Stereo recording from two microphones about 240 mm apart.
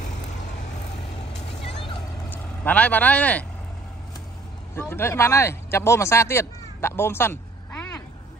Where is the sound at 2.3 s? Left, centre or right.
Centre.